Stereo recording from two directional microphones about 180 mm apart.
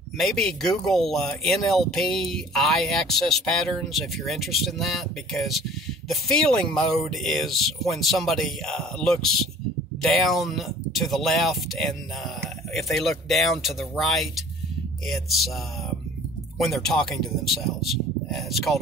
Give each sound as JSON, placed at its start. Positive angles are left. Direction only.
{"t": 0.2, "sound": "speech", "side_deg": 0}
{"t": 12.9, "sound": "speech", "side_deg": 0}
{"t": 16.5, "sound": "speech", "side_deg": 0}